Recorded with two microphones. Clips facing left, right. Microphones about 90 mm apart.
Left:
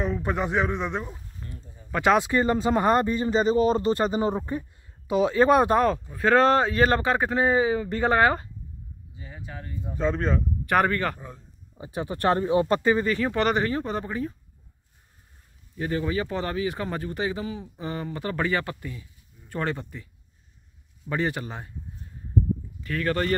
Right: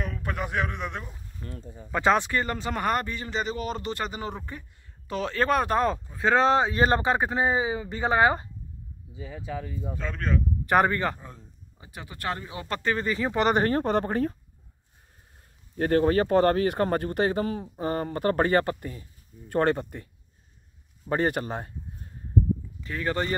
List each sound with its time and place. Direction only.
0.0 s a man's voice: 25° left (ahead or behind)
1.4 s speech: 85° right
2.0 s speech: 10° left (ahead or behind)
2.4 s speech: 25° left (ahead or behind)
5.0 s speech: 10° left (ahead or behind)
6.1 s speech: 20° right (ahead or behind)
9.9 s a man's voice: 25° left (ahead or behind)
10.7 s a man's voice: 25° right (ahead or behind)
11.8 s speech: 30° left (ahead or behind)
13.2 s speech: 20° right (ahead or behind)
13.6 s speech: 50° right (ahead or behind)
15.7 s speech: 55° right (ahead or behind)
21.0 s speech: 40° right (ahead or behind)
22.8 s a man's voice: 20° right (ahead or behind)